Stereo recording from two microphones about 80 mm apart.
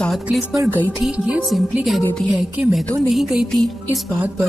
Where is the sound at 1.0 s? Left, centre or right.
Centre.